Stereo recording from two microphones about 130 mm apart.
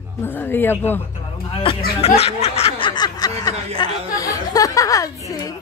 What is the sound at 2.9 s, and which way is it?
Music, 30° left (ahead or behind).